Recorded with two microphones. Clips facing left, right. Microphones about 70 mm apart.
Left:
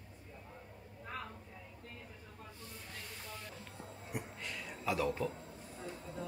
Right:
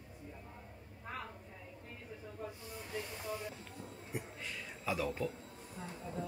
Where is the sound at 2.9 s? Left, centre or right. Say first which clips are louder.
Right 10 dB; centre.